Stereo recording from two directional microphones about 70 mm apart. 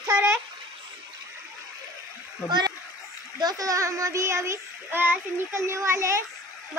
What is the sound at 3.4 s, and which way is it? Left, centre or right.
A child's voice, right.